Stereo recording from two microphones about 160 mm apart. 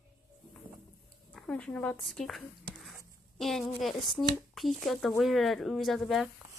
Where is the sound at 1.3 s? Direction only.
5° left (ahead or behind).